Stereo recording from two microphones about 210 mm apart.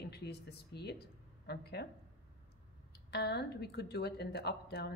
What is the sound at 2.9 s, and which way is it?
Speech, 50° left (ahead or behind).